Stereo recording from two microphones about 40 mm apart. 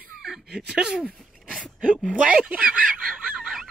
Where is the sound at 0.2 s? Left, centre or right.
Centre.